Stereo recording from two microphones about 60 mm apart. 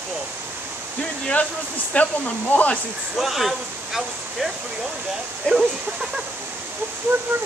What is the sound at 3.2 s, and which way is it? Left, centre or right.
Speech, centre.